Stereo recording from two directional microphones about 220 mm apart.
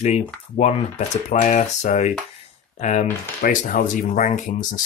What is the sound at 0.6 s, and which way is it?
Speech, 30° left (ahead or behind).